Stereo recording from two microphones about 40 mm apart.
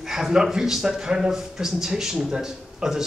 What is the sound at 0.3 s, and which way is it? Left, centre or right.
A man's voice, centre.